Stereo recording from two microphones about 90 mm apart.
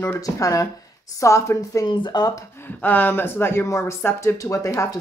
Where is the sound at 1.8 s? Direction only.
55° left (ahead or behind).